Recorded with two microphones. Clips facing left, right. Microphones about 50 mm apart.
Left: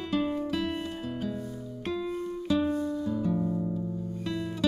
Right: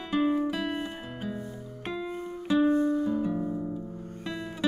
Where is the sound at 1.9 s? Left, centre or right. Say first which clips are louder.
Left 2 dB; right.